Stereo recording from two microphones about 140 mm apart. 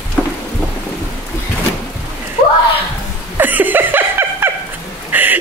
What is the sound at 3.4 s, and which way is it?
Laughter, 10° right (ahead or behind).